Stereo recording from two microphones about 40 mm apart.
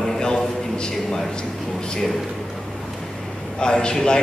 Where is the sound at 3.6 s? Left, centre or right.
Centre.